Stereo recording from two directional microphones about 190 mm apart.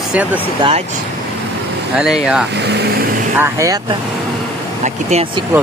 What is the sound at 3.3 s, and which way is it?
Speech, 15° right (ahead or behind).